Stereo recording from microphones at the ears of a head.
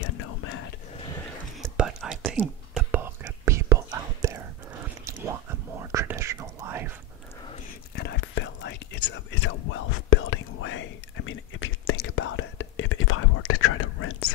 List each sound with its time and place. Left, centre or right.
0.0 s whispering: left
1.6 s whispering: right
7.9 s whispering: left